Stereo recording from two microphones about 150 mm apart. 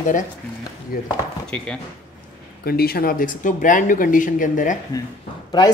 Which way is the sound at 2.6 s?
90° left.